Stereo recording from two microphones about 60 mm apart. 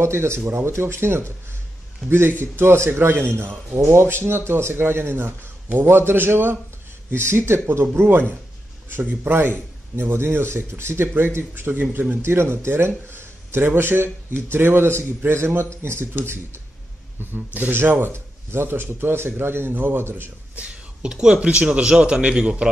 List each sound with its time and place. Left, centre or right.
0.0 s a man's voice: right
17.2 s a man's voice: right
20.5 s speech: centre